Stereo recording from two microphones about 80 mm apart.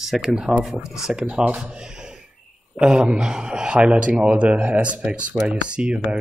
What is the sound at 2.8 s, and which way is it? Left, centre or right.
Speech, centre.